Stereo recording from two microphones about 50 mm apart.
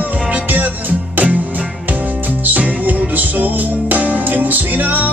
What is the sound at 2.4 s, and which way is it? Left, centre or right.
Music, right.